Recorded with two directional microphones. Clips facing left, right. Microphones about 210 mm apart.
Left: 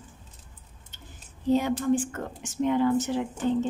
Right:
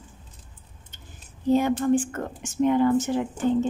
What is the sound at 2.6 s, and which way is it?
Speech, 50° right (ahead or behind).